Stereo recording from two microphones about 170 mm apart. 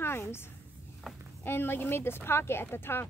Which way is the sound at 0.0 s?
15° left (ahead or behind).